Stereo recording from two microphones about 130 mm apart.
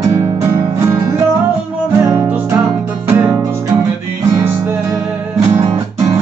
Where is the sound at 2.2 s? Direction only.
15° right (ahead or behind).